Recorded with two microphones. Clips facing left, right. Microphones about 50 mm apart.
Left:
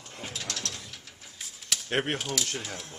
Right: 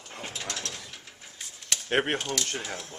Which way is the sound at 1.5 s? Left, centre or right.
Centre.